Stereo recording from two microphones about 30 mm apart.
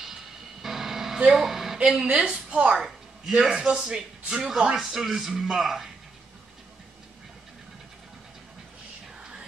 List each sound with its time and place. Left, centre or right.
0.0 s a sound: centre
2.0 s a woman's voice: right
2.8 s a man's voice: centre
4.7 s a man's voice: centre